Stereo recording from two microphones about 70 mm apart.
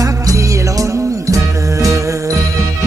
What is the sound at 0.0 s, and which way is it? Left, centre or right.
Music, right.